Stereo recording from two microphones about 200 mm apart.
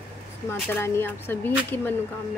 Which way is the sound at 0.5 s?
10° left (ahead or behind).